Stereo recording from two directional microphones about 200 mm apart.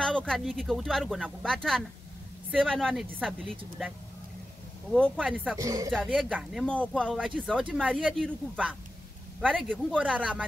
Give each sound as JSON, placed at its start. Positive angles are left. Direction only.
{"t": 0.0, "sound": "speech", "side_deg": 5}
{"t": 4.9, "sound": "speech", "side_deg": 5}
{"t": 5.2, "sound": "speech", "side_deg": -5}
{"t": 5.6, "sound": "speech", "side_deg": -15}
{"t": 5.9, "sound": "speech", "side_deg": -5}
{"t": 6.6, "sound": "speech", "side_deg": 5}
{"t": 7.2, "sound": "speech", "side_deg": -5}